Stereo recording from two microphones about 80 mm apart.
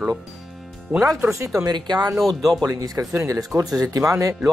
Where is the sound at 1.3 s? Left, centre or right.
Right.